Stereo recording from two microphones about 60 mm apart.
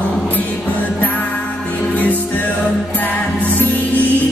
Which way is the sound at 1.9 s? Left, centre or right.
Left.